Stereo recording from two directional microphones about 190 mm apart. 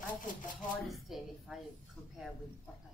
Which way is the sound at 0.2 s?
45° left (ahead or behind).